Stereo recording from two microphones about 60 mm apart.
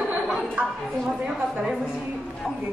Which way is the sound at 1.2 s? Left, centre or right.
Centre.